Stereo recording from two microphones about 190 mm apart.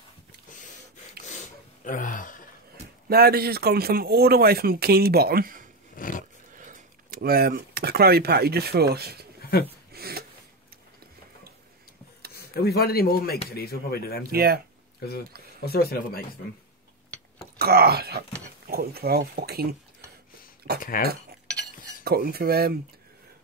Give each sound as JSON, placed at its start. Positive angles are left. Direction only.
{"t": 1.9, "sound": "speech", "side_deg": 45}
{"t": 3.1, "sound": "speech", "side_deg": -55}
{"t": 5.9, "sound": "roar", "side_deg": 45}
{"t": 6.5, "sound": "speech", "side_deg": -45}
{"t": 9.5, "sound": "speech", "side_deg": 55}
{"t": 9.9, "sound": "a sound", "side_deg": -55}
{"t": 12.6, "sound": "speech", "side_deg": 55}
{"t": 14.3, "sound": "speech", "side_deg": -55}
{"t": 15.6, "sound": "speech", "side_deg": 55}
{"t": 17.6, "sound": "speech", "side_deg": -55}
{"t": 20.8, "sound": "speech", "side_deg": 50}
{"t": 22.0, "sound": "speech", "side_deg": -55}